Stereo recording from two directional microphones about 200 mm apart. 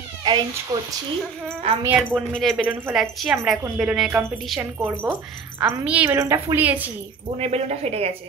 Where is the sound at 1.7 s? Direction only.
30° right (ahead or behind).